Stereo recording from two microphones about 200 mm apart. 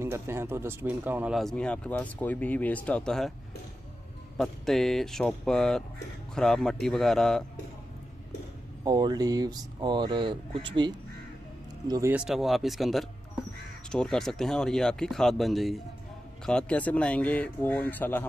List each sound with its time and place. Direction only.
0.0 s speech: 15° right (ahead or behind)
4.4 s speech: centre (ahead or behind)
8.8 s speech: 20° right (ahead or behind)
12.3 s speech: centre (ahead or behind)